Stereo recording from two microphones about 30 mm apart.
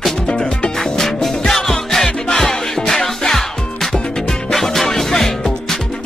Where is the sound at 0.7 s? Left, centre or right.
Centre.